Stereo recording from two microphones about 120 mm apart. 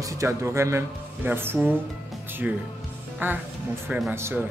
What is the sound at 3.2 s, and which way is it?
Speech, 15° right (ahead or behind).